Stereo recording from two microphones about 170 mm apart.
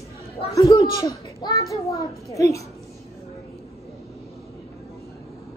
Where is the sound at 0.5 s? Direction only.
20° left (ahead or behind).